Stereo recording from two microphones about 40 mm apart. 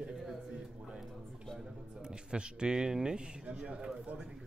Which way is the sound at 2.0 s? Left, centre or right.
Right.